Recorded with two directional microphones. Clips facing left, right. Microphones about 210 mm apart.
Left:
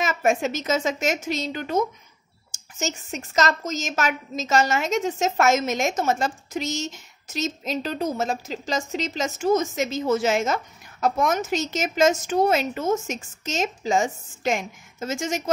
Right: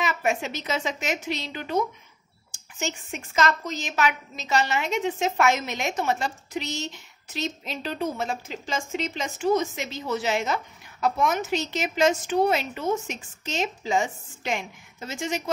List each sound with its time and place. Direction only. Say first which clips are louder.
0.0 s a woman's voice: left 4 dB; 45° left (ahead or behind)